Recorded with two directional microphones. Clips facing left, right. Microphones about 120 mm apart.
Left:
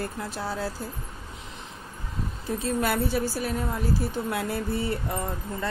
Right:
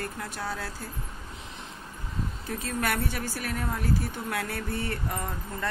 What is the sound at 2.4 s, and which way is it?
Speech, 25° left (ahead or behind).